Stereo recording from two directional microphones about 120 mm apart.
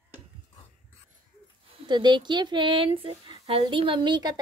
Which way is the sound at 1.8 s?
40° right (ahead or behind).